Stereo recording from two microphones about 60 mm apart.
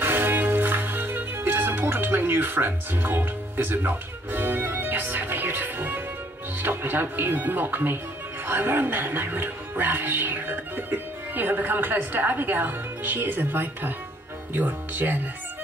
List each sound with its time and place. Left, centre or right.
0.0 s music: right
6.6 s speech: right